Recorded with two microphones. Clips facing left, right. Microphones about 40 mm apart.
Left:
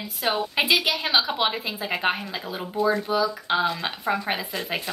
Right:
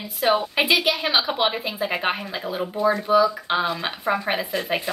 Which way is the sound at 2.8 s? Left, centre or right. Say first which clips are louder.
Right 1 dB; right.